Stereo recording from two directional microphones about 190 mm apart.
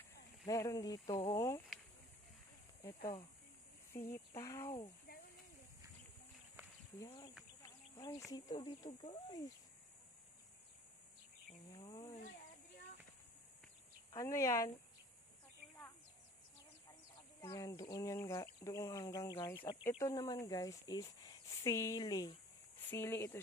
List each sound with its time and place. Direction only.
0.5 s speech: 15° left (ahead or behind)
3.9 s speech: 15° left (ahead or behind)
7.0 s speech: 20° left (ahead or behind)
7.6 s a sound: 20° left (ahead or behind)
8.3 s speech: 20° left (ahead or behind)
11.7 s a sound: 20° left (ahead or behind)
14.1 s speech: 15° left (ahead or behind)
17.4 s speech: 20° left (ahead or behind)